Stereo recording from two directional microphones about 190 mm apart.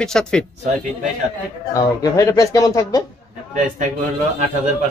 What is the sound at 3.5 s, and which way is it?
Speech, 40° right (ahead or behind).